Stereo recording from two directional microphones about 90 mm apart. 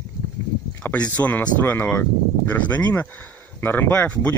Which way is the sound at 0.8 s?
15° left (ahead or behind).